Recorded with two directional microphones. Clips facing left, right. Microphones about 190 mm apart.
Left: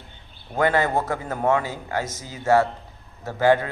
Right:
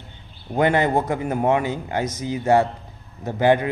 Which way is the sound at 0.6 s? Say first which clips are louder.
Right 2 dB; 20° right (ahead or behind).